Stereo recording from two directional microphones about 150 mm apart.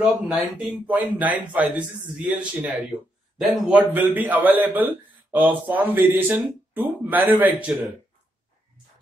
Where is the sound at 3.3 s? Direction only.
Centre (ahead or behind).